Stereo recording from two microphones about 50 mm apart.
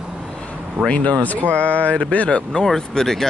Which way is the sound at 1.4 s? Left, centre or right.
Right.